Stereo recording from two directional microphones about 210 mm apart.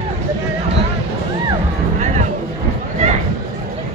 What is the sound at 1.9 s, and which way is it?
Music, 35° right (ahead or behind).